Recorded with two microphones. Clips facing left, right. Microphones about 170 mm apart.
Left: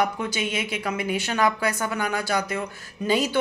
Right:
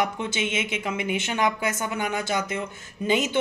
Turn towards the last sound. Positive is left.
turn(degrees=-20)  # may be behind; listen again after turning